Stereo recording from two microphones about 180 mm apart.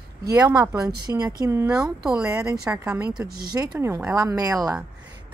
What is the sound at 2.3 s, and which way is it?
Speech, 15° right (ahead or behind).